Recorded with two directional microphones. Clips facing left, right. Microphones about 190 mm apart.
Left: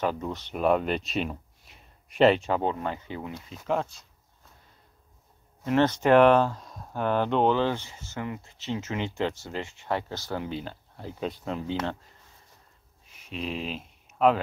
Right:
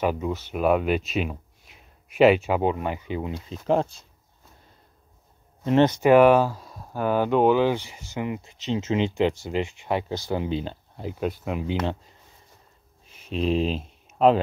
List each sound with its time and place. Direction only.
0.0 s speech: 10° right (ahead or behind)
3.6 s speech: 30° right (ahead or behind)
5.7 s speech: 15° right (ahead or behind)
11.1 s speech: 10° right (ahead or behind)
13.1 s a sound: 30° right (ahead or behind)